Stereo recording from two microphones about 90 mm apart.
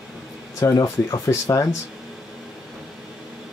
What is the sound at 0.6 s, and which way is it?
Speech, 35° left (ahead or behind).